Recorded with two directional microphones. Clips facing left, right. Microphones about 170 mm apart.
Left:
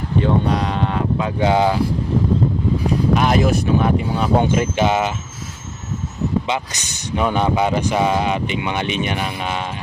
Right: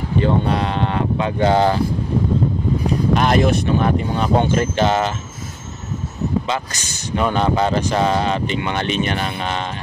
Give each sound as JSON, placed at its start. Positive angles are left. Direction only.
{"t": 0.2, "sound": "speech", "side_deg": 0}
{"t": 3.2, "sound": "speech", "side_deg": 5}
{"t": 6.4, "sound": "speech", "side_deg": 15}